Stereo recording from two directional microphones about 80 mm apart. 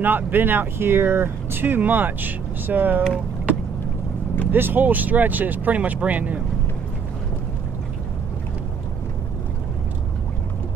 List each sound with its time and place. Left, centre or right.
0.0 s speech: right
4.5 s speech: right